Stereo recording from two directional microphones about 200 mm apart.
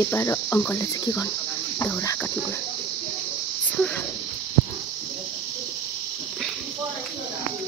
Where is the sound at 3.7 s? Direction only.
5° left (ahead or behind).